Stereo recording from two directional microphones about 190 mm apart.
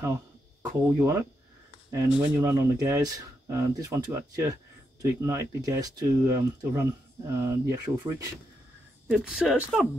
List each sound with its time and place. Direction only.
0.0 s speech: 15° right (ahead or behind)
2.5 s speech: 20° right (ahead or behind)
9.0 s speech: 5° right (ahead or behind)